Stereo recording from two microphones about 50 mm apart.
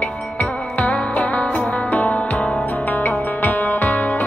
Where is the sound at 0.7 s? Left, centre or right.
Left.